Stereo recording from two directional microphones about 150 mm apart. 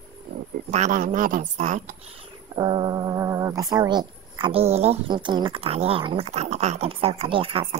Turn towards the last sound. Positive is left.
turn(degrees=-35)  # may be behind; listen again after turning